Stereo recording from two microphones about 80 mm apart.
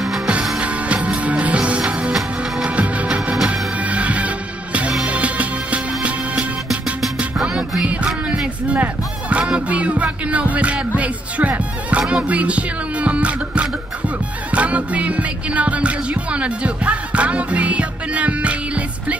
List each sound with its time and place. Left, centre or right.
0.6 s music: centre
2.1 s music: centre
2.7 s music: centre
3.3 s music: centre
3.7 s music: centre
8.6 s speech: centre
11.0 s music: centre